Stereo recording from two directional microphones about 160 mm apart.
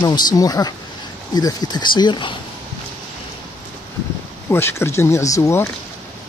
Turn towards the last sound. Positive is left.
turn(degrees=20)  # may be behind; listen again after turning